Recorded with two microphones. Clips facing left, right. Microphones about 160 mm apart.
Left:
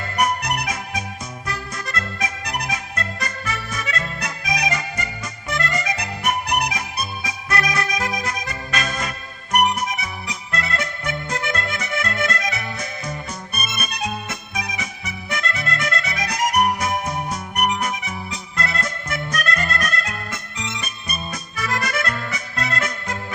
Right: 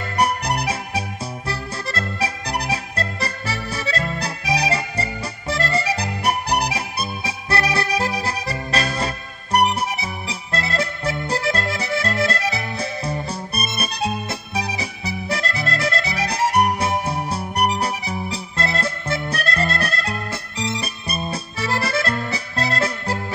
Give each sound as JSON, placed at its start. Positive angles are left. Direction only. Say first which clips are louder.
{"t": 0.2, "sound": "music", "louder": "right 1 dB", "side_deg": -30}